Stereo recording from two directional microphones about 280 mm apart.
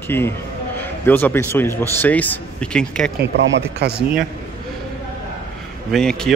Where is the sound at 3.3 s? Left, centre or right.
Right.